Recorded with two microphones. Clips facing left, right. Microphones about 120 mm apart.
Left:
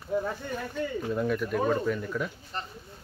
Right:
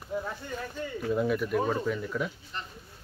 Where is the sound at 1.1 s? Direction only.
5° right (ahead or behind).